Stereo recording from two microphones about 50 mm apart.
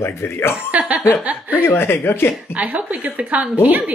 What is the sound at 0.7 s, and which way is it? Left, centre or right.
Speech, right.